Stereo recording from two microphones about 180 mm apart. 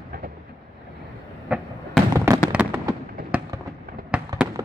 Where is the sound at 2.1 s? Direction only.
15° right (ahead or behind).